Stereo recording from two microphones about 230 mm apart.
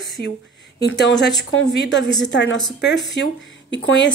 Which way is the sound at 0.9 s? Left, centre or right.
Left.